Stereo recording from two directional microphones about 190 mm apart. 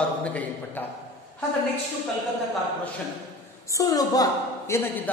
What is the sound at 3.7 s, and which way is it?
Speech, 20° left (ahead or behind).